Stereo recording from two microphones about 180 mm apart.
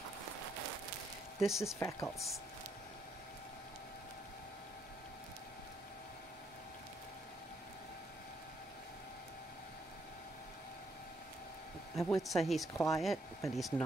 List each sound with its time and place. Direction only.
1.4 s speech: centre (ahead or behind)
1.8 s speech: 15° left (ahead or behind)
11.9 s speech: centre (ahead or behind)
12.7 s speech: 15° left (ahead or behind)
13.0 s speech: centre (ahead or behind)